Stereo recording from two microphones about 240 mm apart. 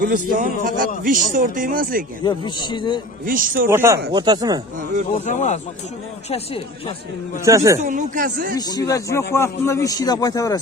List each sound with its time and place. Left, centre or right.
0.3 s a man's voice: right
2.2 s speech: centre
3.3 s a man's voice: right
3.6 s speech: centre
5.1 s speech: left
7.4 s speech: centre
7.8 s a man's voice: right
8.5 s a man's voice: centre